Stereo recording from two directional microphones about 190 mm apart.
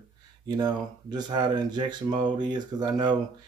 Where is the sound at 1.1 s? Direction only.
20° right (ahead or behind).